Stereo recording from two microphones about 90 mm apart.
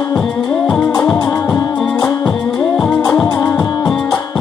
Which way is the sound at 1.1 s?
50° left (ahead or behind).